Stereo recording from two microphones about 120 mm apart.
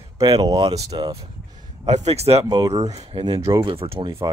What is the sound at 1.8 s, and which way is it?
Speech, 65° right (ahead or behind).